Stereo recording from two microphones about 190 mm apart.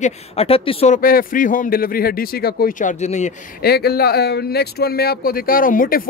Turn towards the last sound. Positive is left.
turn(degrees=45)  # may be behind; listen again after turning